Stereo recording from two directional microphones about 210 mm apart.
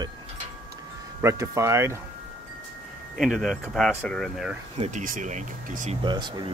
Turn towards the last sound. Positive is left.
turn(degrees=-20)  # may be behind; listen again after turning